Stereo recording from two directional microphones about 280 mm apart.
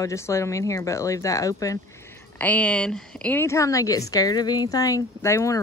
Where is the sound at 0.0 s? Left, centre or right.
Centre.